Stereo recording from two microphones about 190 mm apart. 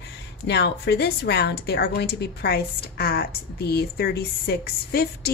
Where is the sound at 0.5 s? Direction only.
65° left (ahead or behind).